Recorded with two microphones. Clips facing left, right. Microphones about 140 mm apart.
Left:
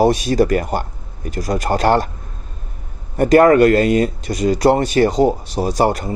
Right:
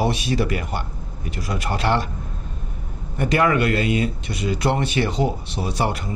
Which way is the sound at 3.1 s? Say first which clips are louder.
Left 9 dB; 45° left (ahead or behind).